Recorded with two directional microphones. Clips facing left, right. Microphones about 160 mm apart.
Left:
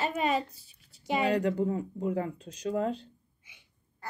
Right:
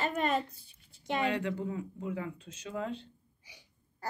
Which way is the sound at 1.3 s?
40° left (ahead or behind).